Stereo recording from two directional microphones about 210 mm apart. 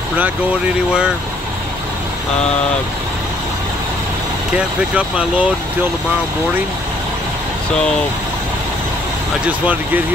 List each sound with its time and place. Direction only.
4.6 s speech: 5° right (ahead or behind)